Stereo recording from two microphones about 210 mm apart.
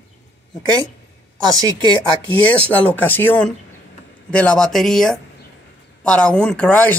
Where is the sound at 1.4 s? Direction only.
20° right (ahead or behind).